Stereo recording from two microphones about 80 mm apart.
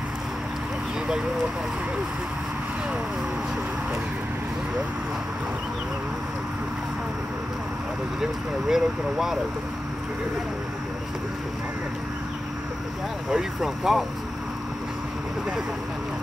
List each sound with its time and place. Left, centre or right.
8.2 s speech: centre
13.3 s speech: centre